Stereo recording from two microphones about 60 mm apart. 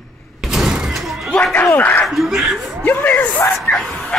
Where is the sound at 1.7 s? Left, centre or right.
Left.